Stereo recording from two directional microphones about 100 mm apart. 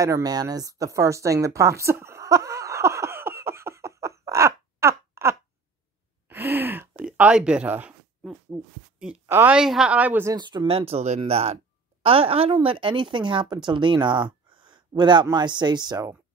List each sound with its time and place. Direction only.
0.0 s a sound: 35° right (ahead or behind)
6.2 s gasp: 20° right (ahead or behind)
7.2 s a woman's voice: 10° right (ahead or behind)
9.5 s a woman's voice: 5° right (ahead or behind)
10.3 s speech: 50° right (ahead or behind)
10.7 s a woman's voice: 80° right; by 16.1 s 45° right (ahead or behind)